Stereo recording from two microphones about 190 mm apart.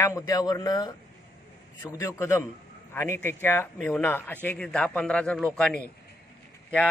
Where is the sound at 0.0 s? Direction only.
20° left (ahead or behind).